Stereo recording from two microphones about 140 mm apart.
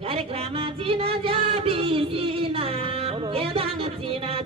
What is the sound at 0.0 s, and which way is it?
Music, 40° right (ahead or behind).